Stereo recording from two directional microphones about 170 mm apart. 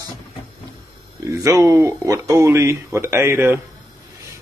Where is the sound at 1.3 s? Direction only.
20° right (ahead or behind).